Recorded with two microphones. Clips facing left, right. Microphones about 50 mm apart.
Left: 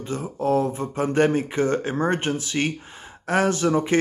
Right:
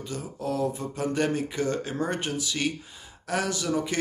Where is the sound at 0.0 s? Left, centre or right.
Left.